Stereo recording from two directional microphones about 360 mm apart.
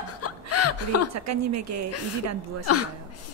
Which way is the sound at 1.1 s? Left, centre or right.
Right.